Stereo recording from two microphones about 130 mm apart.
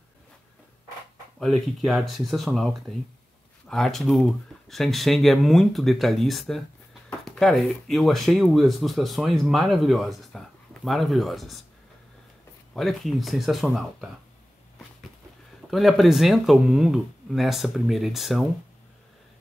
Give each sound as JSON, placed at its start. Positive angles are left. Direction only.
{"t": 1.4, "sound": "speech", "side_deg": 0}
{"t": 12.7, "sound": "speech", "side_deg": 0}
{"t": 15.7, "sound": "speech", "side_deg": 0}